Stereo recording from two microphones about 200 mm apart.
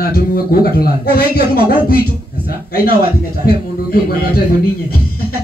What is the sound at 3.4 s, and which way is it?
A man's voice, 50° left (ahead or behind).